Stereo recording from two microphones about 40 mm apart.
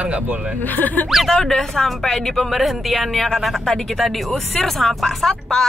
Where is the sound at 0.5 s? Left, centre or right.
Left.